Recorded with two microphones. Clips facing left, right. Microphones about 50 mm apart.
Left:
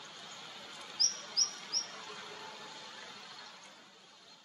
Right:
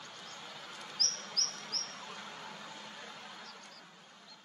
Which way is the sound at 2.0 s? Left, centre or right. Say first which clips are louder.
Right 1 dB; centre.